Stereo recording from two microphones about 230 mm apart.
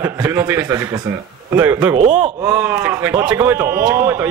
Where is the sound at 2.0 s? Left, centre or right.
Right.